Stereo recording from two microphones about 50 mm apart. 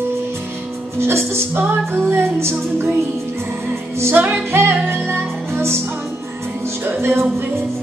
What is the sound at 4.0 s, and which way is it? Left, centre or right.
Music, right.